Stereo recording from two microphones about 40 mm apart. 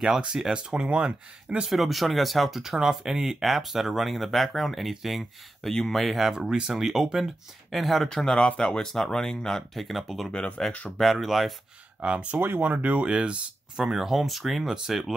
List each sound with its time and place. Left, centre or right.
0.5 s speech: right
1.7 s speech: centre
2.6 s speech: centre
6.3 s speech: centre
7.7 s speech: centre
8.1 s speech: centre
9.8 s speech: centre
10.6 s speech: centre
11.0 s speech: centre
12.0 s speech: right
12.4 s speech: right
12.7 s speech: right
13.0 s speech: right
13.7 s speech: centre